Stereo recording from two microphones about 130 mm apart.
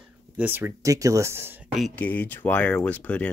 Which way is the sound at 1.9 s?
10° left (ahead or behind).